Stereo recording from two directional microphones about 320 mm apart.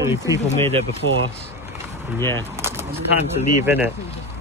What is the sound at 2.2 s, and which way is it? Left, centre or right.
Speech, centre.